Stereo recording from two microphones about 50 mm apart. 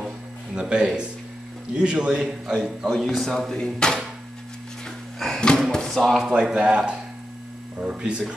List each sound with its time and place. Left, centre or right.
0.6 s a man's voice: centre
2.9 s speech: centre
4.8 s a sound: centre
5.7 s drawer open or close: centre
6.3 s a man's voice: centre